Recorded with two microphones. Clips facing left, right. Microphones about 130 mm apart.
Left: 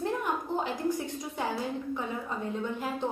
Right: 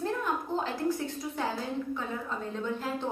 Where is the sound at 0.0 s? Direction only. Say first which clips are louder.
Even; 15° left (ahead or behind).